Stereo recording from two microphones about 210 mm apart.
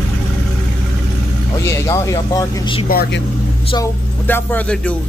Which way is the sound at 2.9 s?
50° left (ahead or behind).